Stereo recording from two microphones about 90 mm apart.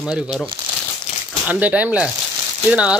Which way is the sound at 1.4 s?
15° right (ahead or behind).